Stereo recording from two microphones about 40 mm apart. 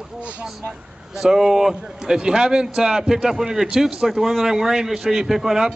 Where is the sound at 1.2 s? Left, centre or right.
Centre.